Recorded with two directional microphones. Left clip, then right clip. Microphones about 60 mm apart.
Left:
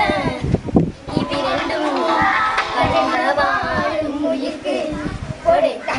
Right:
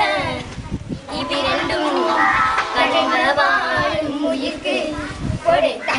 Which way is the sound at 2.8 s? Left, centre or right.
Centre.